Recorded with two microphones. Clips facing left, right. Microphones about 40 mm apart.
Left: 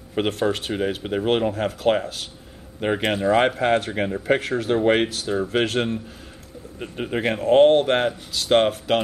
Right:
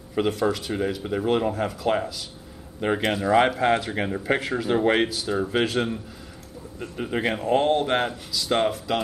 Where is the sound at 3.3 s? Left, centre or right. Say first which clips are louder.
Right 1 dB; left.